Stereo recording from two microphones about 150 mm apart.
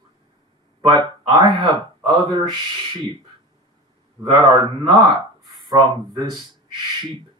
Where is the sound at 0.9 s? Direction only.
30° right (ahead or behind).